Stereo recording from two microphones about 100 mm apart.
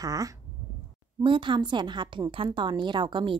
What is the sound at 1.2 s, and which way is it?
A woman's voice, 55° right (ahead or behind).